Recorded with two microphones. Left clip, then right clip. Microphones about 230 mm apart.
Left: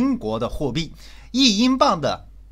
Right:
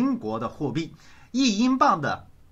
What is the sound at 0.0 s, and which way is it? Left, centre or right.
Speech, left.